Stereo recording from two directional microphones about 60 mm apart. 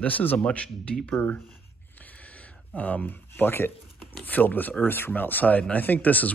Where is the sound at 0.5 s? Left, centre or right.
Centre.